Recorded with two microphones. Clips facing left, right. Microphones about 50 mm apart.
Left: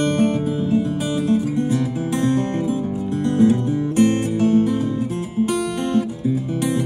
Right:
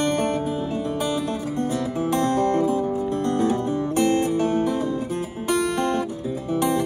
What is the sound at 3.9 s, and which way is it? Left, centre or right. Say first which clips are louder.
Music: left 2 dB; left.